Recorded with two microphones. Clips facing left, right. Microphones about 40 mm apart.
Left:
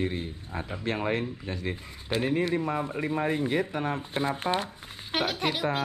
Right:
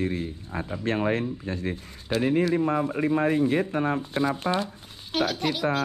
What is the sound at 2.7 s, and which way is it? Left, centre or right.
A man's voice, right.